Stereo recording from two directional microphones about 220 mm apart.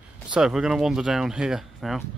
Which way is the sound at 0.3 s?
5° right (ahead or behind).